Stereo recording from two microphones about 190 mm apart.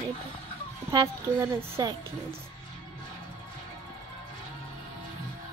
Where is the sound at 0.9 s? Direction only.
20° right (ahead or behind).